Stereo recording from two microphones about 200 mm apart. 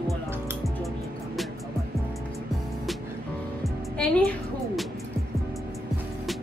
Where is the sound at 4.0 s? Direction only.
5° left (ahead or behind).